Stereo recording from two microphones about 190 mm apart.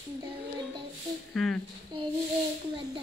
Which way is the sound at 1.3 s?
Centre (ahead or behind).